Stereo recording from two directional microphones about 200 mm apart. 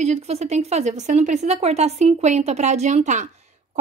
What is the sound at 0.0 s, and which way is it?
Speech, 30° right (ahead or behind).